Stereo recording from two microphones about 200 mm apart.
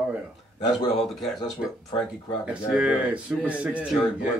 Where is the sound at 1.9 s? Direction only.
25° left (ahead or behind).